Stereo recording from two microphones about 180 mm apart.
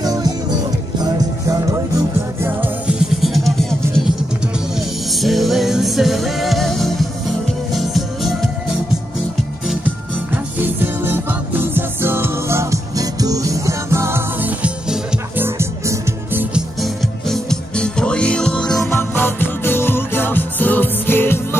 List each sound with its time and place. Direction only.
0.0 s music: 20° right (ahead or behind)
2.4 s music: 10° right (ahead or behind)
9.7 s music: 10° right (ahead or behind)
16.8 s music: centre (ahead or behind)